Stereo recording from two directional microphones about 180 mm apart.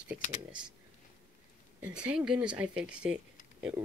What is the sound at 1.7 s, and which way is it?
Speech, 5° right (ahead or behind).